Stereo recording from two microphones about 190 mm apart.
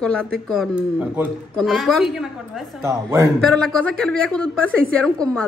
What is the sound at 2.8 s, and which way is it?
Speech, 15° right (ahead or behind).